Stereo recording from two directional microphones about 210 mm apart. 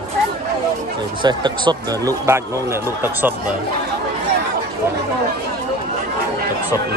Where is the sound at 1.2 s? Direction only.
20° right (ahead or behind).